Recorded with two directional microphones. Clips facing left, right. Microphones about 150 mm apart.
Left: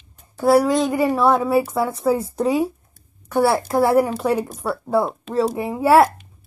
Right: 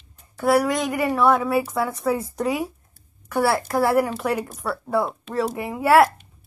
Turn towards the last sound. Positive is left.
turn(degrees=25)  # may be behind; listen again after turning